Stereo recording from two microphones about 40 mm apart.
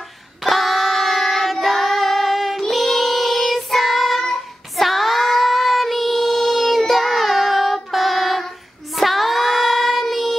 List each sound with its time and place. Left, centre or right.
0.4 s child singing: centre